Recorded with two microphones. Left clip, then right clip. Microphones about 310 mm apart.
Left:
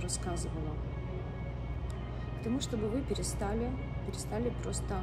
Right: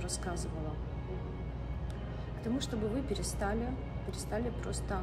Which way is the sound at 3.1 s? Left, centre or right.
Centre.